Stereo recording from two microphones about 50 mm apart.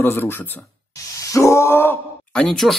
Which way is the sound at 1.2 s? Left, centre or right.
Left.